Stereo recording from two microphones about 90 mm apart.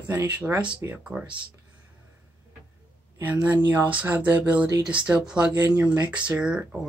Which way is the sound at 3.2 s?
20° right (ahead or behind).